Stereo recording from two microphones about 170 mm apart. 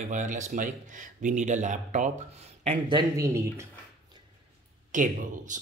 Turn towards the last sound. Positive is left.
turn(degrees=-50)  # may be behind; listen again after turning